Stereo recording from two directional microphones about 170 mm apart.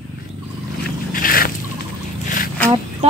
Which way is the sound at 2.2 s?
55° left (ahead or behind).